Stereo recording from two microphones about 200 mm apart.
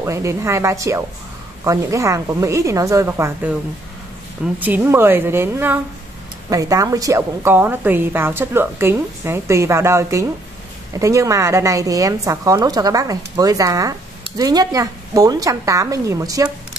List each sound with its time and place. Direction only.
0.0 s a woman's voice: 15° right (ahead or behind)
4.6 s a woman's voice: 10° right (ahead or behind)